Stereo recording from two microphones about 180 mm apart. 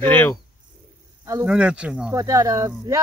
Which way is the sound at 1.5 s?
5° right (ahead or behind).